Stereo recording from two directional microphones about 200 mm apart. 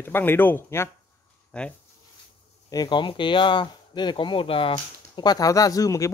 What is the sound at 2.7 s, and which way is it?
Speech, 20° left (ahead or behind).